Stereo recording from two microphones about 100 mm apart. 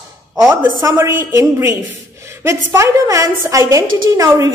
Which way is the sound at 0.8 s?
25° right (ahead or behind).